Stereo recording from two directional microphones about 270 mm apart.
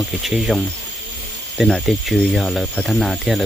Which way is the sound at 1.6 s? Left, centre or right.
Centre.